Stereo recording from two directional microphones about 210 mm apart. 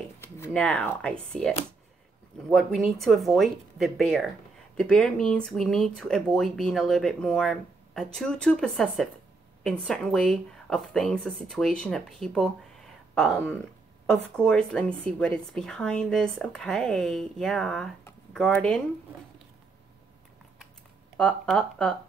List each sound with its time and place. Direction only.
0.2 s speech: 10° left (ahead or behind)
2.5 s a woman's voice: centre (ahead or behind)
21.2 s a woman's voice: 5° left (ahead or behind)